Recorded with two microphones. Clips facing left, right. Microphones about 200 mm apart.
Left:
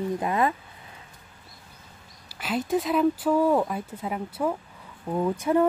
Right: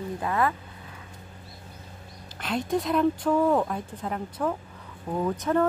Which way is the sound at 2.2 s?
5° left (ahead or behind).